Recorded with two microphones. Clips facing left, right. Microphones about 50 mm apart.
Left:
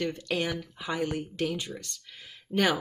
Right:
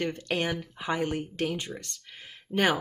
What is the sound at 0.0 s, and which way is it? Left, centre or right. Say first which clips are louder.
Speech: right 1 dB; right.